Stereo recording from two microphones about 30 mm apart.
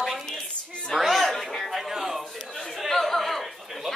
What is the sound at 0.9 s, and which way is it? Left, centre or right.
Chatter, centre.